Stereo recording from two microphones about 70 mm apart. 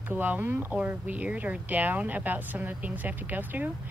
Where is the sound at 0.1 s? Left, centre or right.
Right.